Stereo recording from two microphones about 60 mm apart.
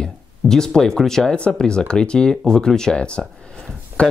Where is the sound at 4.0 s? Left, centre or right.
Centre.